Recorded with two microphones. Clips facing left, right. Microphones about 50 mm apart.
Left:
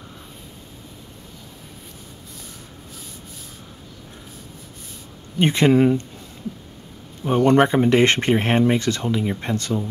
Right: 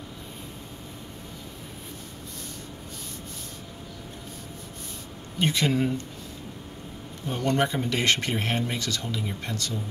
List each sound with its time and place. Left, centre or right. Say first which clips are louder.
5.4 s speech: left 9 dB; left
7.2 s speech: left 10 dB; left